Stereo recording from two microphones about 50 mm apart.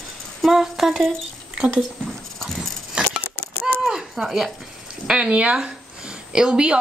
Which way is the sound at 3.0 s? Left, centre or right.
Centre.